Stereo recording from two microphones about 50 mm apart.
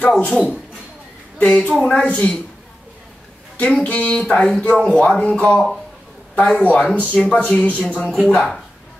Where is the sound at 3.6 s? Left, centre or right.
Centre.